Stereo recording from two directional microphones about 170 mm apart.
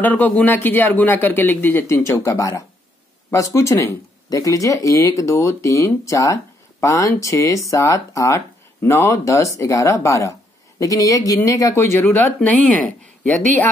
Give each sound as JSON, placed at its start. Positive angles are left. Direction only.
{"t": 0.0, "sound": "speech", "side_deg": 10}